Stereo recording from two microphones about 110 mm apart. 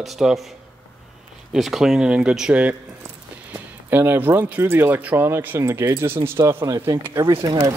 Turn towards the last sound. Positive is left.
turn(degrees=-45)  # may be behind; listen again after turning